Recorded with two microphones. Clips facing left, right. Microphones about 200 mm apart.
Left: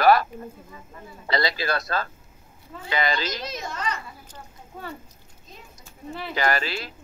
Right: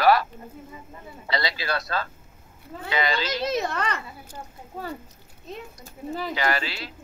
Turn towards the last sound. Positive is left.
turn(degrees=45)  # may be behind; listen again after turning